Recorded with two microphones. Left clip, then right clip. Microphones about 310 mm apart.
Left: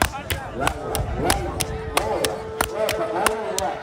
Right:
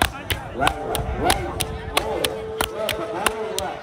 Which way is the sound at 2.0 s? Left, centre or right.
Centre.